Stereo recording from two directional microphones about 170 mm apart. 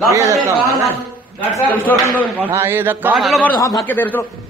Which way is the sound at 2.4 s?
15° right (ahead or behind).